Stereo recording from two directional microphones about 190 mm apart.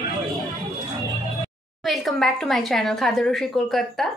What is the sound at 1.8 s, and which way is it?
A woman's voice, centre (ahead or behind).